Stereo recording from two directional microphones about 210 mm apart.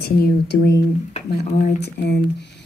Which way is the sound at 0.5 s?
55° left (ahead or behind).